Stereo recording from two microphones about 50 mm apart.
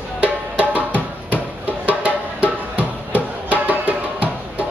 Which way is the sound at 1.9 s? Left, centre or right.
Right.